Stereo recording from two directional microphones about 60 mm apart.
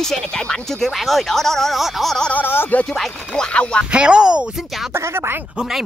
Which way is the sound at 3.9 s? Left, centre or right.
Centre.